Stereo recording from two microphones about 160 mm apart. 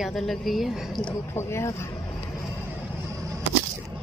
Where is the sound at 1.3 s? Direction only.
15° left (ahead or behind).